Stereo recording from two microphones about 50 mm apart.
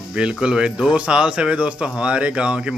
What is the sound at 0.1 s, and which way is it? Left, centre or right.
Speech, centre.